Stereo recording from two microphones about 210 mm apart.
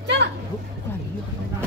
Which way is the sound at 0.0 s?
55° right (ahead or behind).